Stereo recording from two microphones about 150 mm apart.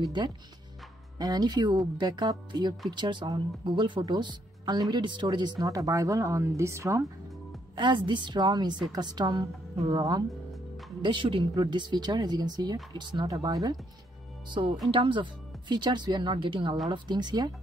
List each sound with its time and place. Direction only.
0.2 s speech: 30° right (ahead or behind)
7.7 s speech: 30° right (ahead or behind)
14.9 s speech: 35° right (ahead or behind)